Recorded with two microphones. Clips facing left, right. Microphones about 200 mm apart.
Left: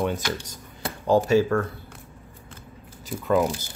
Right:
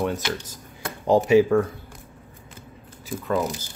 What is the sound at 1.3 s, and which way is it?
Speech, 15° right (ahead or behind).